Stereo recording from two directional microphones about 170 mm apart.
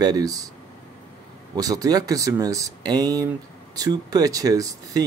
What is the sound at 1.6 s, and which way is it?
Speech, 20° right (ahead or behind).